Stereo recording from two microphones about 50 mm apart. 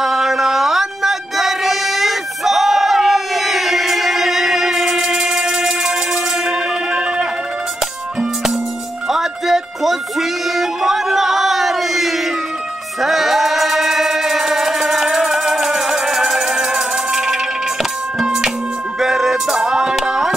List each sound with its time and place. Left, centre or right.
0.0 s music: centre
9.1 s music: centre